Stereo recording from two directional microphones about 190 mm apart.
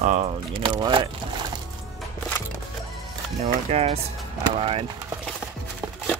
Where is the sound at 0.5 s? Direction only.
25° right (ahead or behind).